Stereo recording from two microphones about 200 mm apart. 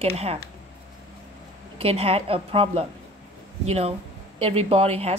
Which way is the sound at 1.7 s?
30° right (ahead or behind).